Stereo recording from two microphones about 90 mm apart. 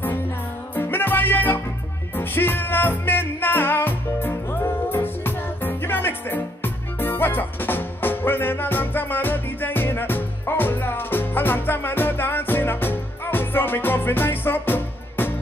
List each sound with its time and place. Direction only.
0.7 s music: 20° left (ahead or behind)